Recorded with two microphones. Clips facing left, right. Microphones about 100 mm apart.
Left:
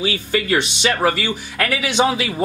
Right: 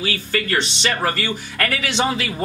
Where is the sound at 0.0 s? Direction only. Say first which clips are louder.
Left 3 dB; 15° left (ahead or behind).